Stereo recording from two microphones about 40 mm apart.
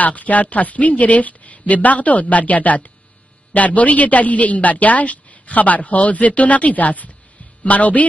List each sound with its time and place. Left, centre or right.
0.0 s a woman's voice: left